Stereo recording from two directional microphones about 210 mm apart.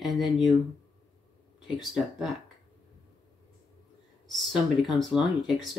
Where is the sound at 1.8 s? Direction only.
Centre (ahead or behind).